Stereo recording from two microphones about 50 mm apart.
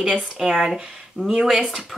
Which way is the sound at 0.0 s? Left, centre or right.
Centre.